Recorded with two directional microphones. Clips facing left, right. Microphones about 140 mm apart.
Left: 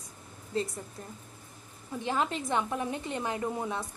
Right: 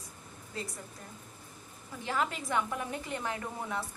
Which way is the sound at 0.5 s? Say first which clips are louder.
Left 9 dB; 25° left (ahead or behind).